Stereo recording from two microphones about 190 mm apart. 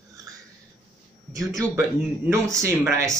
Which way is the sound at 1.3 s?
15° right (ahead or behind).